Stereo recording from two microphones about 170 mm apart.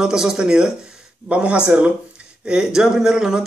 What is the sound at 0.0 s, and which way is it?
Speech, 5° right (ahead or behind).